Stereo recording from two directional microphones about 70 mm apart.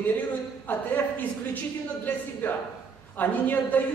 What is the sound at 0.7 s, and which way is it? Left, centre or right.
Speech, left.